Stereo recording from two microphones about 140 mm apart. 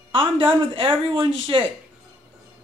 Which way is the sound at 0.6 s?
40° right (ahead or behind).